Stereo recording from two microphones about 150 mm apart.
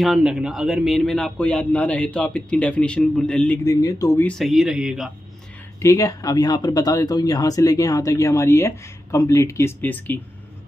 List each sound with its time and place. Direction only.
0.0 s speech: 5° right (ahead or behind)
3.6 s speech: 20° left (ahead or behind)
4.3 s speech: centre (ahead or behind)
5.8 s speech: 20° left (ahead or behind)